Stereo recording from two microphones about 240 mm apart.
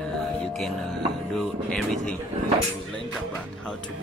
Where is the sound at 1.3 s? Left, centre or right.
Centre.